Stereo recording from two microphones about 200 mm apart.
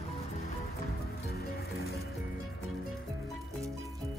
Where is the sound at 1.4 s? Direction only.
50° left (ahead or behind).